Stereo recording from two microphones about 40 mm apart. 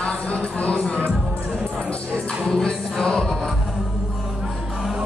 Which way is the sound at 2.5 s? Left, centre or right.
Left.